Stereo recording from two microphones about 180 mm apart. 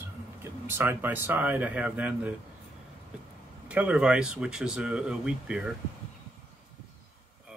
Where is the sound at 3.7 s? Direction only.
5° right (ahead or behind).